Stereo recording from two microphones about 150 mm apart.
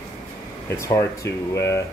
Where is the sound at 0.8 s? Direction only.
20° left (ahead or behind).